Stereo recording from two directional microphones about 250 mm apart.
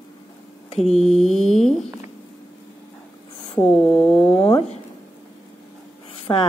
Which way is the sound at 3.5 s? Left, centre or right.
Centre.